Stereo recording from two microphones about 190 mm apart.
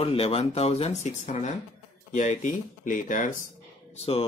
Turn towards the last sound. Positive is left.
turn(degrees=30)  # may be behind; listen again after turning